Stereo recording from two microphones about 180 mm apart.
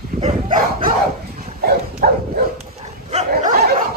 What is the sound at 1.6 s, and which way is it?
Dog, 55° right (ahead or behind).